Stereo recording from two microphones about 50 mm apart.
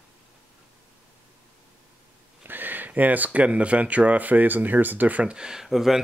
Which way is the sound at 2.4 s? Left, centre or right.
Right.